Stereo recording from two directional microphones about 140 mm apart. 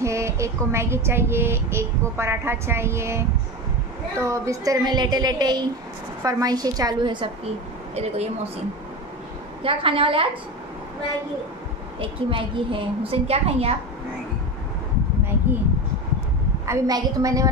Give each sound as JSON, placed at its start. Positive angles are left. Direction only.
{"t": 0.0, "sound": "child singing", "side_deg": -20}
{"t": 4.2, "sound": "a woman's voice", "side_deg": -20}
{"t": 7.9, "sound": "a woman's voice", "side_deg": -50}
{"t": 9.6, "sound": "a woman's voice", "side_deg": -40}
{"t": 12.0, "sound": "a woman's voice", "side_deg": -40}
{"t": 16.6, "sound": "a woman's voice", "side_deg": -20}